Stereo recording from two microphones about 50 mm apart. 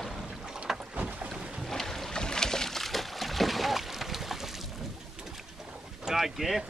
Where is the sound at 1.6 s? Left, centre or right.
Centre.